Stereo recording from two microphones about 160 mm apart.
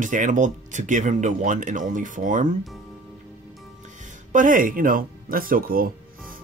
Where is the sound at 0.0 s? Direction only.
50° right (ahead or behind).